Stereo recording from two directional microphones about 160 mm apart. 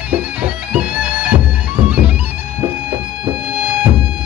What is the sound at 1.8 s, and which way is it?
Music, 5° right (ahead or behind).